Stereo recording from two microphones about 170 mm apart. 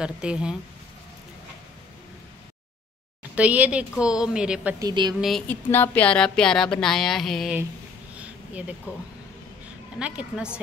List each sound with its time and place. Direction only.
0.0 s speech: 5° right (ahead or behind)
3.3 s a woman's voice: 10° right (ahead or behind)
4.7 s speech: 25° right (ahead or behind)
5.5 s speech: 10° left (ahead or behind)
8.1 s a sound: 10° right (ahead or behind)
9.9 s a woman's voice: 5° right (ahead or behind)